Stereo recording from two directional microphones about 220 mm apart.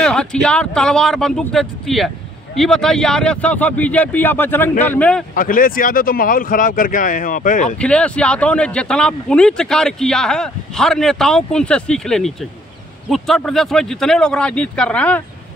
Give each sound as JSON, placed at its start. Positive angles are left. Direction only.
{"t": 0.0, "sound": "speech", "side_deg": 5}
{"t": 5.3, "sound": "speech", "side_deg": 40}
{"t": 7.7, "sound": "speech", "side_deg": 5}